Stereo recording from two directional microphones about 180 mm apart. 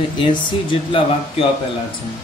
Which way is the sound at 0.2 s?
30° left (ahead or behind).